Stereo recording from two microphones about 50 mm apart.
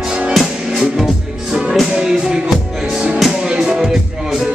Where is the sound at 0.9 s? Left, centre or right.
Centre.